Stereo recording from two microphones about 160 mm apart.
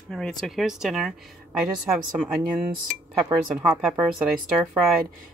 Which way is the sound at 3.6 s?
5° right (ahead or behind).